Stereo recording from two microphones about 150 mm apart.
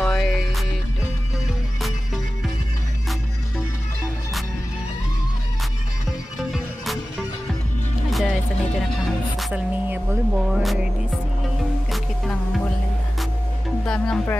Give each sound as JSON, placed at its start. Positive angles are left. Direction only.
{"t": 0.0, "sound": "music", "side_deg": 0}
{"t": 6.0, "sound": "music", "side_deg": 0}
{"t": 11.9, "sound": "music", "side_deg": 5}
{"t": 13.8, "sound": "music", "side_deg": 5}